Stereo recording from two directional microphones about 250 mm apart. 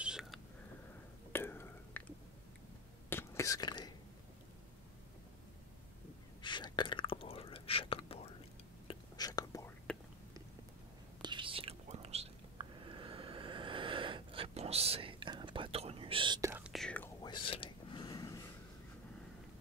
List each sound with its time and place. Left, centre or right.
0.0 s a sound: centre
1.3 s whispering: centre
3.1 s whispering: centre
6.4 s whispering: centre
11.2 s whispering: centre